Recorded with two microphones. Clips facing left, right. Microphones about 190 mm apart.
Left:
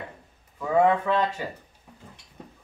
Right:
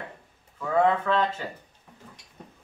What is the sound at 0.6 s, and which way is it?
Speech, 10° left (ahead or behind).